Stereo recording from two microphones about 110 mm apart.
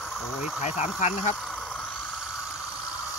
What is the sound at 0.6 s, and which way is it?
Speech, 90° left.